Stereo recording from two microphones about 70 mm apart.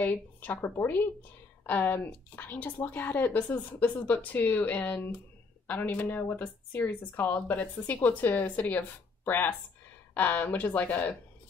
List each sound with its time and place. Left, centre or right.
0.0 s a woman's voice: left